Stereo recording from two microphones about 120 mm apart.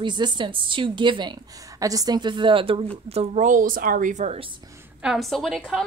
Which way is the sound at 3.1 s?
75° right (ahead or behind).